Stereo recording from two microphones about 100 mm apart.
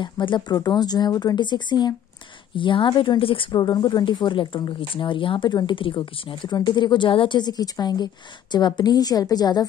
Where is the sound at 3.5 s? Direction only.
45° left (ahead or behind); by 6.3 s 60° left (ahead or behind).